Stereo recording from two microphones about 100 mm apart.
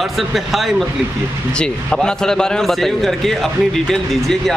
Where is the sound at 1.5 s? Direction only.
10° left (ahead or behind).